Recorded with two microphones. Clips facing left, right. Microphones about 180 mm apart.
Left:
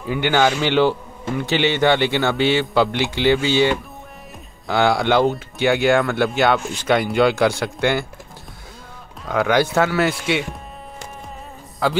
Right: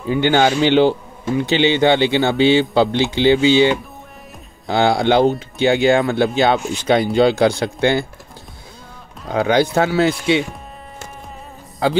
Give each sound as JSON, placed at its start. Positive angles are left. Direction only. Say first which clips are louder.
{"t": 0.0, "sound": "a man's voice", "louder": "right 3 dB", "side_deg": -25}
{"t": 9.3, "sound": "a man's voice", "louder": "right 2 dB", "side_deg": -25}